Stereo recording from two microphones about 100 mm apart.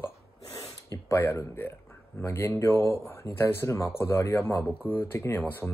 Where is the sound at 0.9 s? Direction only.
25° left (ahead or behind).